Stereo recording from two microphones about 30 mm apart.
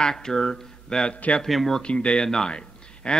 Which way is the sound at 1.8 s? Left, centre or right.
Left.